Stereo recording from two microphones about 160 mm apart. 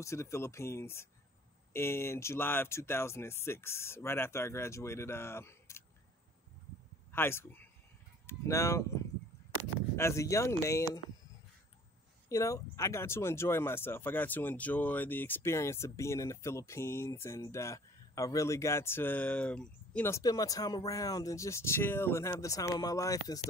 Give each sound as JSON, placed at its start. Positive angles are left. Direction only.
{"t": 0.0, "sound": "speech", "side_deg": 15}
{"t": 7.1, "sound": "a man's voice", "side_deg": 15}
{"t": 9.9, "sound": "speech", "side_deg": 15}
{"t": 12.3, "sound": "speech", "side_deg": 20}